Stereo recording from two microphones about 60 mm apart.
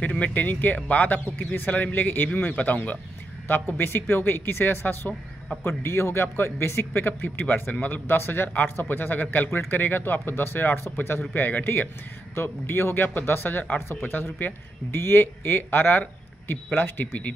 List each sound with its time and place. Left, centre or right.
0.0 s a man's voice: left
12.4 s a man's voice: left